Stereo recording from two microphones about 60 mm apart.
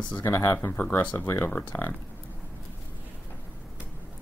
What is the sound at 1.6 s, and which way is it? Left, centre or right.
Speech, left.